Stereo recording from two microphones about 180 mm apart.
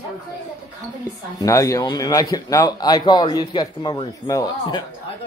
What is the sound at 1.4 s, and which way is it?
Speech, 20° left (ahead or behind).